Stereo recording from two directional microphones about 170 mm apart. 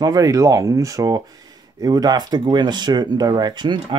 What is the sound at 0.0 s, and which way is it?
Speech, 20° right (ahead or behind).